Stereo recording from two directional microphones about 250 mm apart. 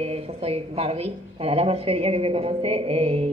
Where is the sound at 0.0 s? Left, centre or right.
Right.